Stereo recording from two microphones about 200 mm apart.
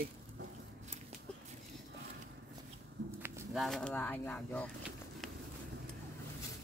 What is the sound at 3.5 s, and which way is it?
Speech, centre (ahead or behind).